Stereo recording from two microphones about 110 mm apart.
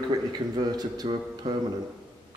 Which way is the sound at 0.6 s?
40° right (ahead or behind).